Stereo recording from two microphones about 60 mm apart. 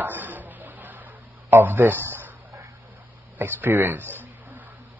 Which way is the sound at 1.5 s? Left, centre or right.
Right.